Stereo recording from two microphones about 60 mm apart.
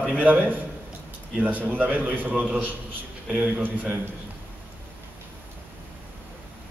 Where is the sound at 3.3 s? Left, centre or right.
Centre.